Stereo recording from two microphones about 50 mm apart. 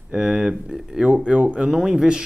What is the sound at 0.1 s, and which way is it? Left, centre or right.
Speech, centre.